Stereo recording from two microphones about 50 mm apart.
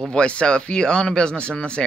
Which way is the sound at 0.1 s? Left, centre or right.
Left.